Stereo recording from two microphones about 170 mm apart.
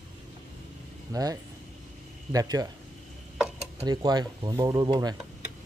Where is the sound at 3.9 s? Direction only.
25° right (ahead or behind).